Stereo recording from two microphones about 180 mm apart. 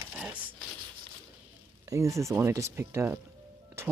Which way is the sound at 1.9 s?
15° right (ahead or behind).